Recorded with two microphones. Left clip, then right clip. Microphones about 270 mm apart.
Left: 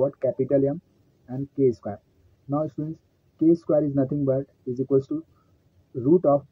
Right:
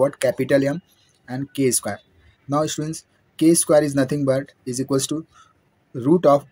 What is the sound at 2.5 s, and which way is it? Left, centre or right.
Speech, right.